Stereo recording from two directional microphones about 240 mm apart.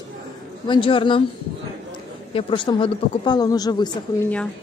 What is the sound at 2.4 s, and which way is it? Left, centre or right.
Speech, left.